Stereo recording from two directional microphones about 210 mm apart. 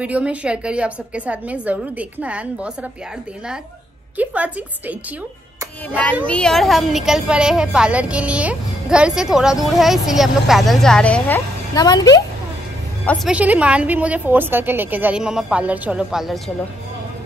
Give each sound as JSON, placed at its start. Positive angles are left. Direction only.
{"t": 0.0, "sound": "a woman's voice", "side_deg": -5}
{"t": 4.2, "sound": "a woman's voice", "side_deg": -5}
{"t": 6.2, "sound": "a woman's voice", "side_deg": 5}
{"t": 11.7, "sound": "speech", "side_deg": 20}
{"t": 13.0, "sound": "a woman's voice", "side_deg": 5}
{"t": 13.3, "sound": "a woman's voice", "side_deg": -5}